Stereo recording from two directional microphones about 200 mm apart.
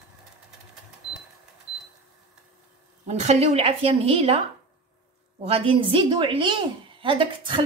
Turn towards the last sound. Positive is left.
turn(degrees=-25)  # may be behind; listen again after turning